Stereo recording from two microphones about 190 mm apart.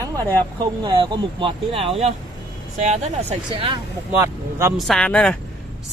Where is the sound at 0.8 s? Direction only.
25° right (ahead or behind).